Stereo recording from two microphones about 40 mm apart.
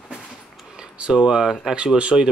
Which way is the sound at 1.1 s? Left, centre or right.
Centre.